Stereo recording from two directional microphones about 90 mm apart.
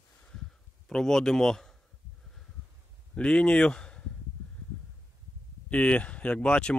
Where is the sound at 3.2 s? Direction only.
10° left (ahead or behind).